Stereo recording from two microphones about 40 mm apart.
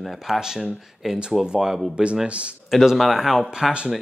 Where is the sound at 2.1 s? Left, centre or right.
Right.